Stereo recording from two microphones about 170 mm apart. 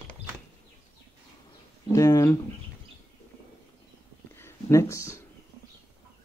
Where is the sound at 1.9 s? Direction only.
20° left (ahead or behind).